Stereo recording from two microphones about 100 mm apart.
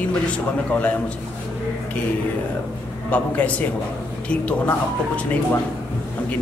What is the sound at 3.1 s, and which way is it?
Speech, 15° left (ahead or behind).